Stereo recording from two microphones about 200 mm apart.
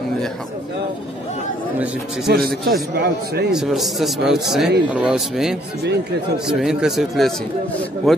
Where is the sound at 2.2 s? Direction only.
50° right (ahead or behind).